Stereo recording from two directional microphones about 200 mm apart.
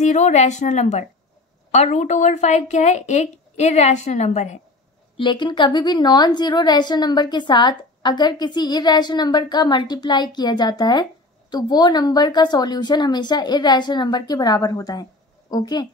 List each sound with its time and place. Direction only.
0.0 s a woman's voice: 35° left (ahead or behind)
5.1 s a woman's voice: 25° left (ahead or behind)